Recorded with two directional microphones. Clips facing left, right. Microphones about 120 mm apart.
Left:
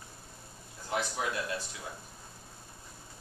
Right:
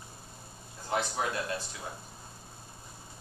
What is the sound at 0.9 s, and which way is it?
Speech, 35° right (ahead or behind).